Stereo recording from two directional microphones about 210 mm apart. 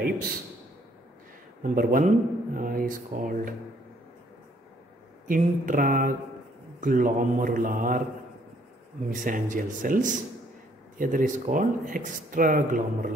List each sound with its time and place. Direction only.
1.6 s speech: 40° right (ahead or behind)
5.3 s speech: 40° right (ahead or behind)
9.1 s speech: 40° right (ahead or behind)